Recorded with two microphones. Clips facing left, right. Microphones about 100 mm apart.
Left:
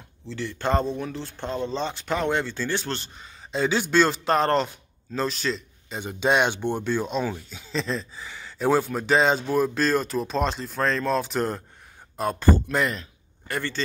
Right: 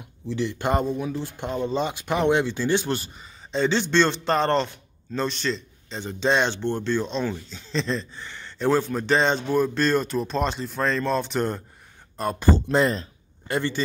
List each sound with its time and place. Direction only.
0.3 s speech: 15° right (ahead or behind)
3.0 s speech: centre (ahead or behind)
12.6 s speech: 30° right (ahead or behind)
13.5 s a man's voice: 20° right (ahead or behind)